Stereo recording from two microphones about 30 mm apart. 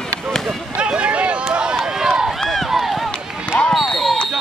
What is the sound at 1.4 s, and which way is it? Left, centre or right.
Run, right.